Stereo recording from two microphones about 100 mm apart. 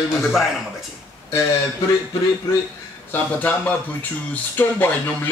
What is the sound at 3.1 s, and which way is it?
Speech, 15° left (ahead or behind).